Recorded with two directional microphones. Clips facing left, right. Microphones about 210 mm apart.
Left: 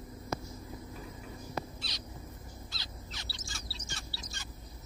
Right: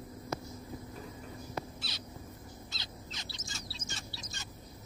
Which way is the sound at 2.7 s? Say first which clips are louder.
Right 1 dB; 20° right (ahead or behind).